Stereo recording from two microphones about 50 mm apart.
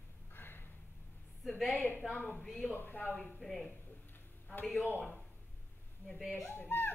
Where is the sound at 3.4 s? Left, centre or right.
Centre.